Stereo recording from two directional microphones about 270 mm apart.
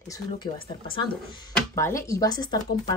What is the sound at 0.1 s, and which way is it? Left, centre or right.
Speech, centre.